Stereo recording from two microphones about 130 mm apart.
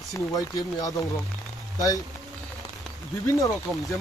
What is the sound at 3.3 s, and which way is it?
Speech, 25° left (ahead or behind).